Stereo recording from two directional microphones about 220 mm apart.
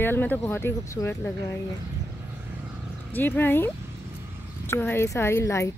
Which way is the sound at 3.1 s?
10° left (ahead or behind).